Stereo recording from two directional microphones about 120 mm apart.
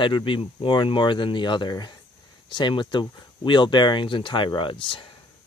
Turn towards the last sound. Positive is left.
turn(degrees=45)  # may be behind; listen again after turning